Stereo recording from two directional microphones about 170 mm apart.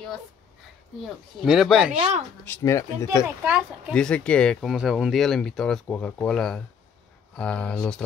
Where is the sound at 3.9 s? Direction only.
5° left (ahead or behind).